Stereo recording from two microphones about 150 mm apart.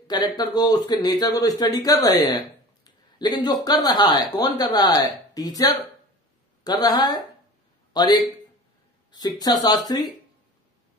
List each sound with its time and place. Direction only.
0.1 s a man's voice: 25° left (ahead or behind)